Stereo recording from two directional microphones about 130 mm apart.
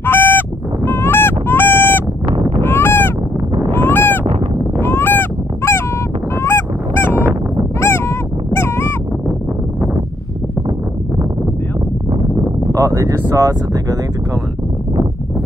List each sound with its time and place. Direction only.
0.0 s honk: 15° left (ahead or behind)
7.8 s dog: 20° left (ahead or behind)
12.7 s a sound: 25° right (ahead or behind)